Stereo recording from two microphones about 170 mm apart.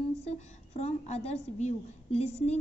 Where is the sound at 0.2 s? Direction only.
40° left (ahead or behind).